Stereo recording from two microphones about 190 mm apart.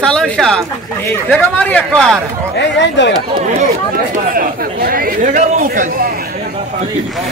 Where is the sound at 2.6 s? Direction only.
70° left (ahead or behind).